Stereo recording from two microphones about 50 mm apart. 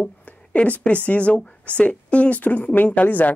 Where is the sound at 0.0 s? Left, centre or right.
Left.